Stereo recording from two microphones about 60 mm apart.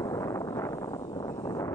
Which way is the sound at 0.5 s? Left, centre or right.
Left.